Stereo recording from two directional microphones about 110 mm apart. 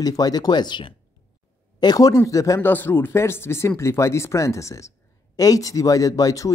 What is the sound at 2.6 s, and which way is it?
Speech, 20° left (ahead or behind).